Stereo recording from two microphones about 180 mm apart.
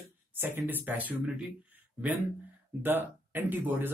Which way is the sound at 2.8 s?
10° right (ahead or behind).